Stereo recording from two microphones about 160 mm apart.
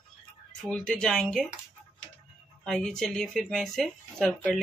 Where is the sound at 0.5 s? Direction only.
5° left (ahead or behind).